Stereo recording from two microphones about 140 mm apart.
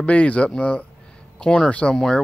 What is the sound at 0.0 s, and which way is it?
Speech, 10° left (ahead or behind).